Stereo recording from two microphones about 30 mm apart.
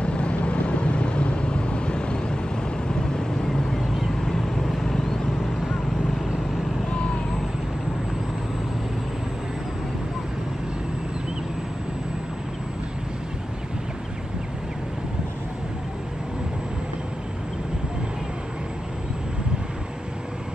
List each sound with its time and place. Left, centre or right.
0.0 s vehicle: left
4.2 s vehicle: centre
4.9 s vehicle: centre
6.9 s vehicle: left